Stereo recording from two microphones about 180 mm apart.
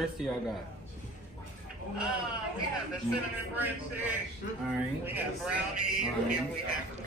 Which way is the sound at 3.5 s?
10° right (ahead or behind).